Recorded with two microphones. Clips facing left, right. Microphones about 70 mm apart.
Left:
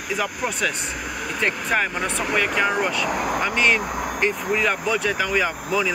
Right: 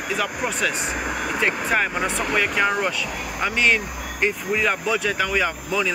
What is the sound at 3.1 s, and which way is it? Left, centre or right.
Speech, left.